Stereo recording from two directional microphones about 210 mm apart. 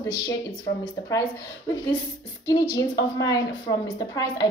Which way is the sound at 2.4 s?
20° left (ahead or behind).